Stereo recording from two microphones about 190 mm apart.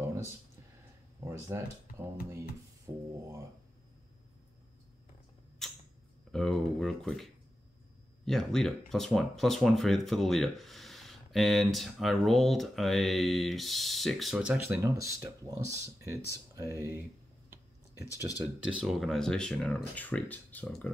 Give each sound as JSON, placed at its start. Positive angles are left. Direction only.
{"t": 1.2, "sound": "speech", "side_deg": -15}
{"t": 2.9, "sound": "a sound", "side_deg": -15}
{"t": 5.6, "sound": "creak", "side_deg": 0}
{"t": 6.3, "sound": "speech", "side_deg": 0}
{"t": 8.3, "sound": "speech", "side_deg": 0}
{"t": 18.4, "sound": "speech", "side_deg": -5}